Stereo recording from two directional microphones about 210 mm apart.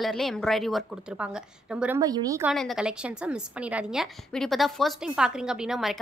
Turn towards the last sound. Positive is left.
turn(degrees=0)  # may be behind; listen again after turning